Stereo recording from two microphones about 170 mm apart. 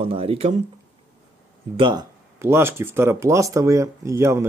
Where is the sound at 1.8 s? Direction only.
25° right (ahead or behind).